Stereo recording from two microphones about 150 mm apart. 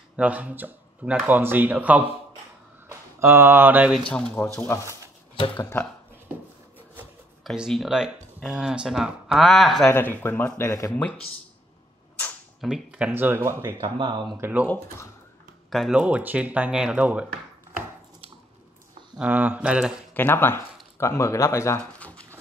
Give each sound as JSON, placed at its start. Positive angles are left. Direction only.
{"t": 0.1, "sound": "speech", "side_deg": -10}
{"t": 4.1, "sound": "speech", "side_deg": 10}
{"t": 5.3, "sound": "speech", "side_deg": 35}
{"t": 7.4, "sound": "speech", "side_deg": 0}
{"t": 9.8, "sound": "speech", "side_deg": 15}
{"t": 12.5, "sound": "speech", "side_deg": -5}
{"t": 13.8, "sound": "speech", "side_deg": -30}
{"t": 14.3, "sound": "speech", "side_deg": -15}
{"t": 15.7, "sound": "speech", "side_deg": -5}
{"t": 19.1, "sound": "speech", "side_deg": -10}
{"t": 20.2, "sound": "speech", "side_deg": 15}
{"t": 21.9, "sound": "a sound", "side_deg": 10}